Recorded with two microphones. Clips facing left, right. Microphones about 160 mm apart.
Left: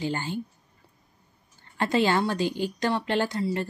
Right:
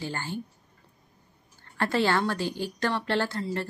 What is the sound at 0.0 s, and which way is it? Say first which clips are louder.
Speech: left 4 dB; 20° left (ahead or behind).